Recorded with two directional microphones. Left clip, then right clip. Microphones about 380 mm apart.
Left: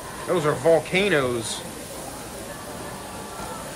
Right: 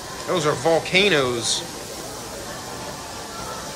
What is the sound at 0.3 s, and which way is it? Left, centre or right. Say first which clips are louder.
Speech: even; centre.